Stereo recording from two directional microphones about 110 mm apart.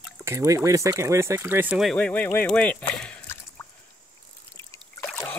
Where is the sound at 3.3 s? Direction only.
20° left (ahead or behind).